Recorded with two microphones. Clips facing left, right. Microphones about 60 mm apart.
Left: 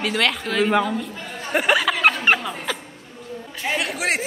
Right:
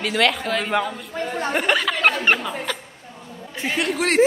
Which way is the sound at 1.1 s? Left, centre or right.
Right.